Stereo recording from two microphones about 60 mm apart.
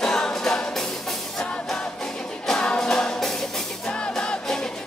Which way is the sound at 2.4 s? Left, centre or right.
Centre.